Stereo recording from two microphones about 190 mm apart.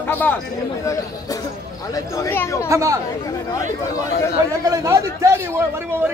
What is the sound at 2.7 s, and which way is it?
Speech, 15° right (ahead or behind).